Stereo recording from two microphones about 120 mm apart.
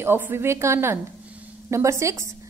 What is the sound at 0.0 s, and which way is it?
A woman's voice, 20° right (ahead or behind).